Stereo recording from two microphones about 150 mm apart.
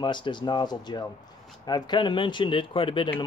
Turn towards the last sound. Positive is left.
turn(degrees=35)  # may be behind; listen again after turning